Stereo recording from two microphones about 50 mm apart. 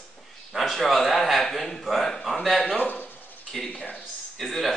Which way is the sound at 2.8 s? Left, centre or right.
Left.